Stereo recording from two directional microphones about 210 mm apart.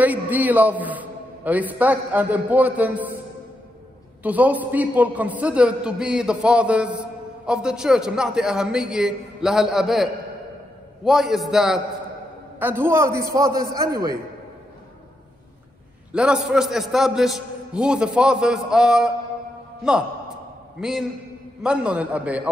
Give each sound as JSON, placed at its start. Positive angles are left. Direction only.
{"t": 0.0, "sound": "a man's voice", "side_deg": -10}
{"t": 4.2, "sound": "a man's voice", "side_deg": -5}
{"t": 11.1, "sound": "a man's voice", "side_deg": 0}
{"t": 16.1, "sound": "a man's voice", "side_deg": -5}
{"t": 20.8, "sound": "a man's voice", "side_deg": 0}